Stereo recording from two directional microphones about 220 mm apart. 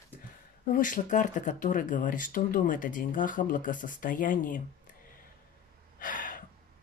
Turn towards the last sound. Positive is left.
turn(degrees=40)  # may be behind; listen again after turning